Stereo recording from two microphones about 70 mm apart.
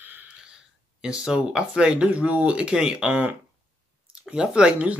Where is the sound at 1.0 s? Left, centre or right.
Centre.